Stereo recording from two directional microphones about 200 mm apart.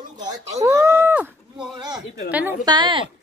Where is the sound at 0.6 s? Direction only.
15° right (ahead or behind).